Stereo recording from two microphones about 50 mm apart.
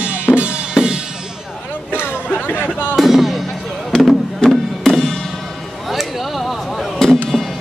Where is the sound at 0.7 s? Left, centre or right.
Centre.